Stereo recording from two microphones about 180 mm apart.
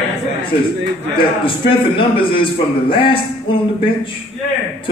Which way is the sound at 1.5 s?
30° left (ahead or behind).